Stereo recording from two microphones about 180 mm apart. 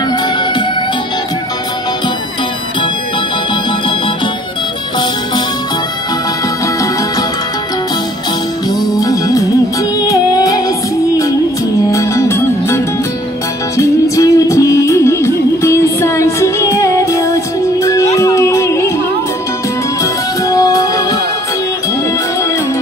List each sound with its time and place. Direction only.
8.9 s music: 20° left (ahead or behind)
11.9 s music: 15° left (ahead or behind)
20.0 s music: 20° left (ahead or behind)